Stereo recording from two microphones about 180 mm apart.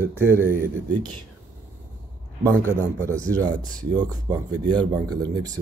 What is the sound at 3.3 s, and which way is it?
Speech, 20° right (ahead or behind).